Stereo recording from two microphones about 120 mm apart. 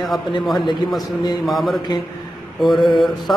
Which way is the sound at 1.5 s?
Centre (ahead or behind).